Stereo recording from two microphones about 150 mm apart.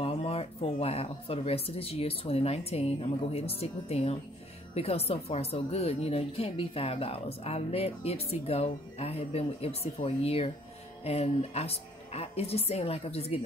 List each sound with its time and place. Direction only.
0.0 s speech: 40° left (ahead or behind)